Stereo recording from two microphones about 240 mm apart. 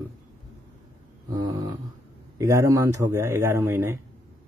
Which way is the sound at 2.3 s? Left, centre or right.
Centre.